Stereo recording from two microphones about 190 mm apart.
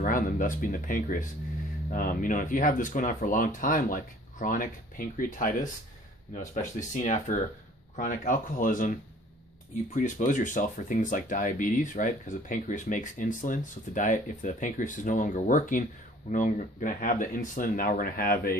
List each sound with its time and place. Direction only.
0.0 s speech: 45° left (ahead or behind)
9.9 s speech: 40° left (ahead or behind)